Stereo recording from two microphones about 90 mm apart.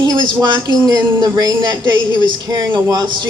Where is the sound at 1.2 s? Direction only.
45° right (ahead or behind).